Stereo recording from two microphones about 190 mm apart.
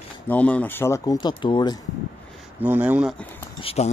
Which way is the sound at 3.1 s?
10° left (ahead or behind).